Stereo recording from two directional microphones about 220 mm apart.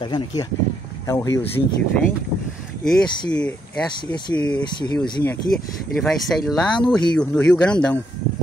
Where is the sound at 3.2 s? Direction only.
5° left (ahead or behind).